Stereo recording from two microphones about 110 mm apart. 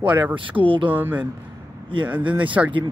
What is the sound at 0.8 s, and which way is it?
Speech, 15° right (ahead or behind).